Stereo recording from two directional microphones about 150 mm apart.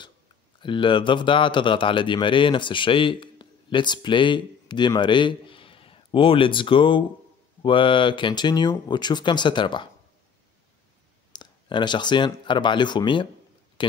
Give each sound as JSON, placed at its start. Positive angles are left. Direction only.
{"t": 0.6, "sound": "a man's voice", "side_deg": 35}
{"t": 11.3, "sound": "speech", "side_deg": 30}